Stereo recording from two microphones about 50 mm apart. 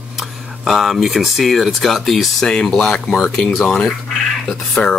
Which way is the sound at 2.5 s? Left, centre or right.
Centre.